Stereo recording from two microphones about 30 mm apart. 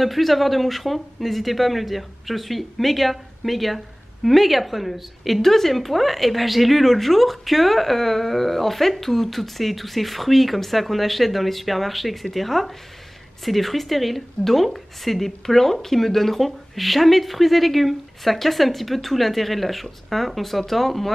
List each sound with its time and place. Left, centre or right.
0.0 s speech: centre